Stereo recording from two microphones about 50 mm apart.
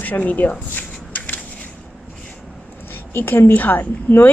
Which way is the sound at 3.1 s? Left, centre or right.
Left.